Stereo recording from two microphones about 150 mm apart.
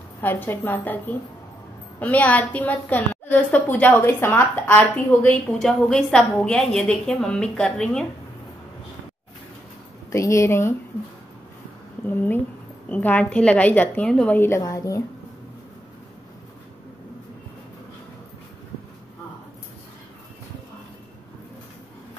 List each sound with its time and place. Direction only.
0.2 s a woman's voice: 15° left (ahead or behind)
10.1 s speech: 20° left (ahead or behind)
12.1 s a woman's voice: 15° left (ahead or behind)